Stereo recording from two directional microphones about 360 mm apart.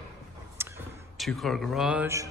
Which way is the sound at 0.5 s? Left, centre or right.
Centre.